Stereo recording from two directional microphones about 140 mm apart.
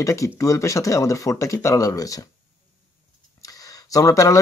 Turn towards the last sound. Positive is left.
turn(degrees=25)  # may be behind; listen again after turning